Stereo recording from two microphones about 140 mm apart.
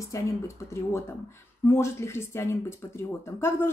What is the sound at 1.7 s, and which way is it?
A woman's voice, 20° left (ahead or behind).